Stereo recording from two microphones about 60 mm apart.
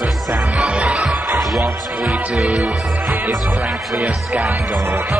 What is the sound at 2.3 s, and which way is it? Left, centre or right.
Music, centre.